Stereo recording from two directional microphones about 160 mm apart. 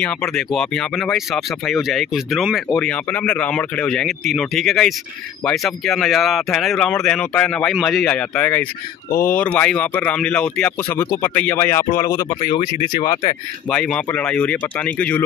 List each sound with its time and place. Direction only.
0.0 s speech: 5° left (ahead or behind)
2.8 s speech: 10° left (ahead or behind)
12.5 s speech: 55° left (ahead or behind)
13.7 s speech: 5° left (ahead or behind)